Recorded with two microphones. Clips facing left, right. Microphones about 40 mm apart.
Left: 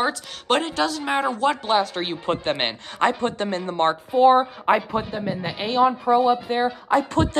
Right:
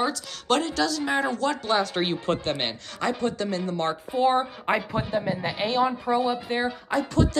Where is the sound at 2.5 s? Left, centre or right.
Left.